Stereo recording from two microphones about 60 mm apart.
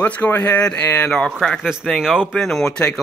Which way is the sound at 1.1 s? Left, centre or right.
Centre.